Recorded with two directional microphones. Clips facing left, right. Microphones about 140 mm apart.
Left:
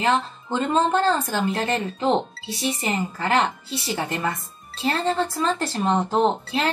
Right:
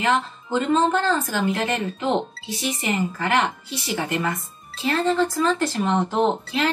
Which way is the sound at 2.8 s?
35° left (ahead or behind).